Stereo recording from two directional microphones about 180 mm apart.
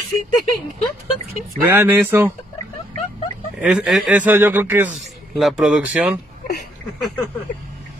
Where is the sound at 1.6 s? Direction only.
10° right (ahead or behind).